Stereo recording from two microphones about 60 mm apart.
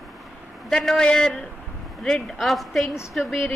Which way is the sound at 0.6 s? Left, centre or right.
Centre.